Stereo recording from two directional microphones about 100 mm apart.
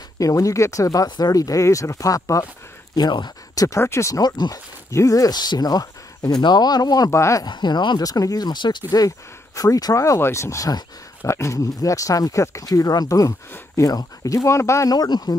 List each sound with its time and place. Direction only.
0.2 s speech: 35° left (ahead or behind)
3.0 s speech: 45° left (ahead or behind)
3.6 s speech: 30° left (ahead or behind)
7.1 s speech: 30° left (ahead or behind)
7.4 s speech: 45° left (ahead or behind); by 14.9 s 30° left (ahead or behind)
14.9 s speech: 40° left (ahead or behind)